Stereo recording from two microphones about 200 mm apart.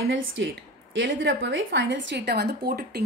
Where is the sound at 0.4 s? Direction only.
65° right (ahead or behind).